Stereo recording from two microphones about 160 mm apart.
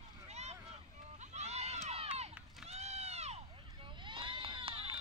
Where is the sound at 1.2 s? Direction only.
45° right (ahead or behind).